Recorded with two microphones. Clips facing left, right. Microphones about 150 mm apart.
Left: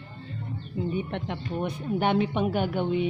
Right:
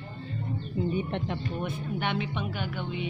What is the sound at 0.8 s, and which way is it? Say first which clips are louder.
Speech: even; 5° left (ahead or behind).